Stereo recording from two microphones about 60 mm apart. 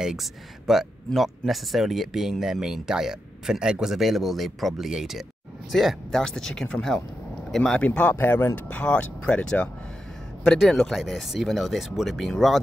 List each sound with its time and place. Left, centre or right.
0.0 s speech: centre
7.8 s speech: left
8.2 s speech: left
8.6 s speech: left
10.4 s speech: centre